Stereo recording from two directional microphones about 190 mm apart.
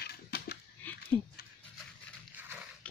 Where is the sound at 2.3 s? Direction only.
10° right (ahead or behind).